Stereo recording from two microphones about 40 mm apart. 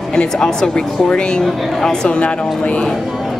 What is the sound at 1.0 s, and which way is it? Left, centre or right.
Music, left.